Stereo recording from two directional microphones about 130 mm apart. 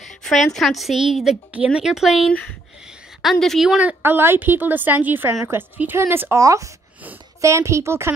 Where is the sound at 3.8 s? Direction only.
15° right (ahead or behind).